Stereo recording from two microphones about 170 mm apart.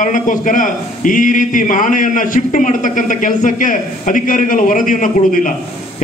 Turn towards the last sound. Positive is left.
turn(degrees=50)  # may be behind; listen again after turning